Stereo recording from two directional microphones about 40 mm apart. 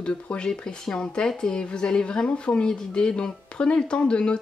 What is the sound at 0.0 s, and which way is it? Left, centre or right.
Speech, left.